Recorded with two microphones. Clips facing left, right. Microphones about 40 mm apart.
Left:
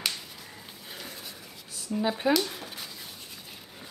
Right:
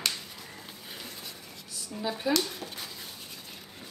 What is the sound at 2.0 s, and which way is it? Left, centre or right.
Speech, left.